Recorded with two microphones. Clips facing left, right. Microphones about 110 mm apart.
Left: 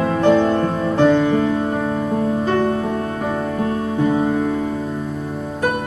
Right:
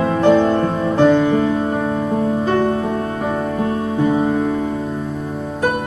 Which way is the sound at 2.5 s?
15° right (ahead or behind).